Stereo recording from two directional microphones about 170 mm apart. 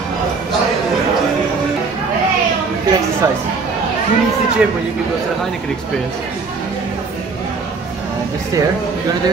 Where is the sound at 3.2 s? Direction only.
20° right (ahead or behind).